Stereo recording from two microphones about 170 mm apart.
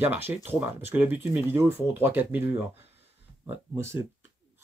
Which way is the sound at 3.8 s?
15° right (ahead or behind).